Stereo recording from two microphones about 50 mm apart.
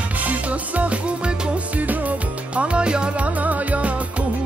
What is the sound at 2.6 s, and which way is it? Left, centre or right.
Music, right.